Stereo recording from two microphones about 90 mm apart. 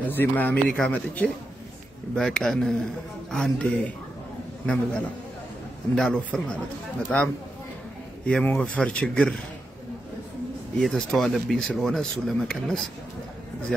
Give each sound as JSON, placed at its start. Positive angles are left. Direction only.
{"t": 0.1, "sound": "speech", "side_deg": 20}
{"t": 2.1, "sound": "speech", "side_deg": 5}
{"t": 4.6, "sound": "speech", "side_deg": 15}
{"t": 8.3, "sound": "speech", "side_deg": 10}
{"t": 10.8, "sound": "speech", "side_deg": 0}